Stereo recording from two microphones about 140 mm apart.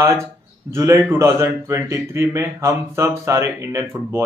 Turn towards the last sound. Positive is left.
turn(degrees=-20)  # may be behind; listen again after turning